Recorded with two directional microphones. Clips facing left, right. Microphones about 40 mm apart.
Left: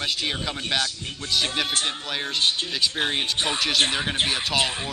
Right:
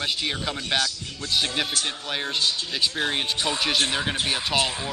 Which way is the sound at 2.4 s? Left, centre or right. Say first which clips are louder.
Left 4 dB; left.